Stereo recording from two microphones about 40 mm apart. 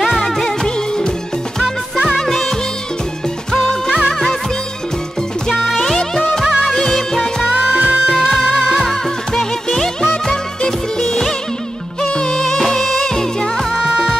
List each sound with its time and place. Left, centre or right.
1.6 s music: centre
3.6 s music: centre
5.5 s music: centre
5.8 s music: centre
6.4 s music: centre
6.9 s music: centre
7.4 s music: right
8.1 s music: centre
8.8 s music: centre
12.4 s music: centre
13.8 s music: centre